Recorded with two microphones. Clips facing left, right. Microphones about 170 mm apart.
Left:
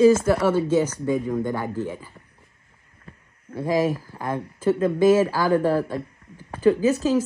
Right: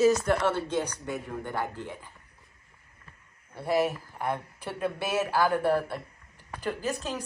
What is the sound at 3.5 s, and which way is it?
Speech, 90° left.